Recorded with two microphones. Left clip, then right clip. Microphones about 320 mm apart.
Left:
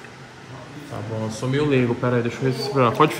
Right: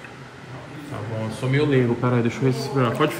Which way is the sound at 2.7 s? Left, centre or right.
Left.